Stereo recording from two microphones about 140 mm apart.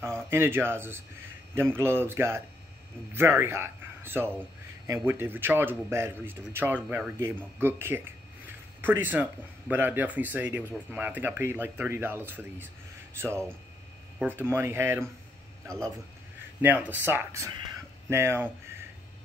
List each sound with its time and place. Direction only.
0.0 s a man's voice: 15° right (ahead or behind)
16.6 s speech: 10° right (ahead or behind)